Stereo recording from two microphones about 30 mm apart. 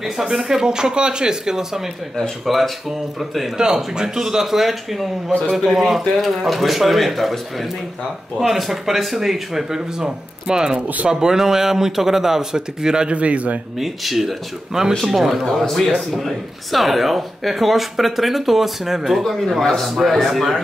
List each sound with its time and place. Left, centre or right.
0.2 s speech: centre
2.4 s speech: centre
3.5 s a man's voice: right; by 7.3 s centre
8.4 s a man's voice: centre
9.9 s a man's voice: right
13.1 s a man's voice: right
13.7 s a man's voice: centre
15.6 s speech: centre
16.1 s speech: centre